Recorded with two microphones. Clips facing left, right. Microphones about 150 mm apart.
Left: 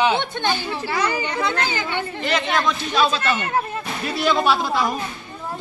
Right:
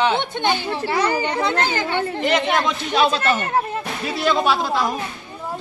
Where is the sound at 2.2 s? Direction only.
20° right (ahead or behind).